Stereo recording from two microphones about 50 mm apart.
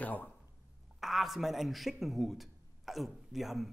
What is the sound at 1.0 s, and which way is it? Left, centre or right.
Speech, centre.